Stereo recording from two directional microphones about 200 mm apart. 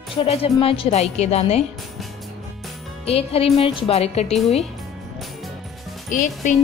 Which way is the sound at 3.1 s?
30° left (ahead or behind).